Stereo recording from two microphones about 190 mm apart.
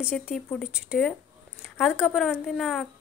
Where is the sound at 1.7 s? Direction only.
10° left (ahead or behind).